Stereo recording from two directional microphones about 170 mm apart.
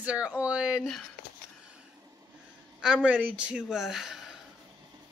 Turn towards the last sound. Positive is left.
turn(degrees=0)  # may be behind; listen again after turning